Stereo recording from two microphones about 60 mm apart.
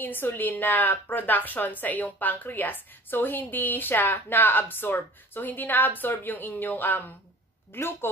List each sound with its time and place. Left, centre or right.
0.0 s a woman's voice: left
7.7 s a woman's voice: left